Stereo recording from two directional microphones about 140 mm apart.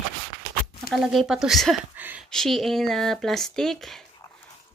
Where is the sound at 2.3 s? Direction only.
5° left (ahead or behind).